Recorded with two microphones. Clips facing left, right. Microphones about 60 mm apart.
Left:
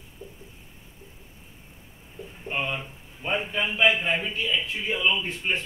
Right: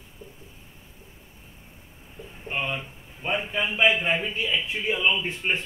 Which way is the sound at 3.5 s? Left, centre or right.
Centre.